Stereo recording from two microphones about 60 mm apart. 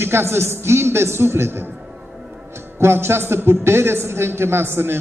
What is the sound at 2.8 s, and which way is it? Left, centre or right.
A man's voice, right.